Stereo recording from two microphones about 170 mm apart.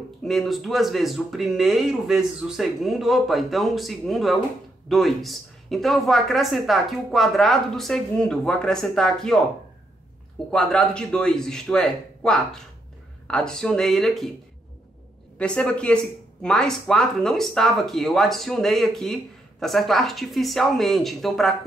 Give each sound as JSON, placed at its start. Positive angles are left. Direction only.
{"t": 0.2, "sound": "speech", "side_deg": 0}
{"t": 10.5, "sound": "speech", "side_deg": 5}
{"t": 15.3, "sound": "a woman's voice", "side_deg": 5}